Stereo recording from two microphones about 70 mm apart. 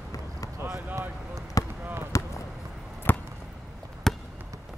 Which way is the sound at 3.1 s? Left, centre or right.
Left.